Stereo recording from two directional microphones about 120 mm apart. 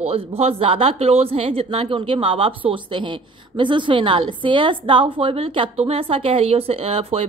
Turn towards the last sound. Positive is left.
turn(degrees=-55)  # may be behind; listen again after turning